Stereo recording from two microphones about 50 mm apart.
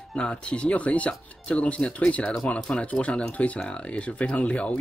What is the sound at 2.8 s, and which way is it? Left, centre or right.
Speech, left.